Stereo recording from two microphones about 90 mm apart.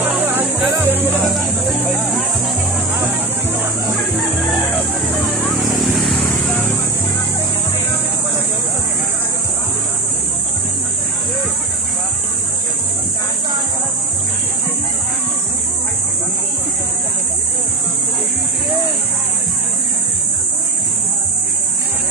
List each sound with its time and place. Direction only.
0.0 s music: 25° right (ahead or behind)
5.4 s vehicle: centre (ahead or behind)